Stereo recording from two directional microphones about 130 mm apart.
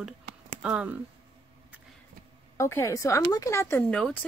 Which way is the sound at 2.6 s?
20° left (ahead or behind).